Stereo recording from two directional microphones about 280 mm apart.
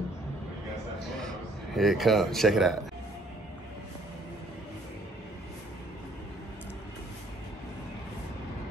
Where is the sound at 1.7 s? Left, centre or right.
Centre.